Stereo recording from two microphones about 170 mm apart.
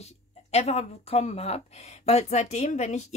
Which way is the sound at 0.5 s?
40° left (ahead or behind).